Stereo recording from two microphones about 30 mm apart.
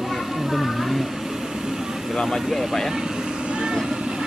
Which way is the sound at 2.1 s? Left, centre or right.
Centre.